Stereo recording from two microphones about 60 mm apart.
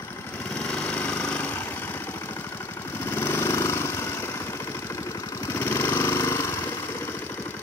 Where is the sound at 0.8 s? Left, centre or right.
Left.